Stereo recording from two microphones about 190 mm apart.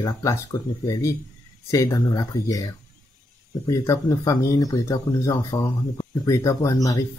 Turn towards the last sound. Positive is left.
turn(degrees=15)  # may be behind; listen again after turning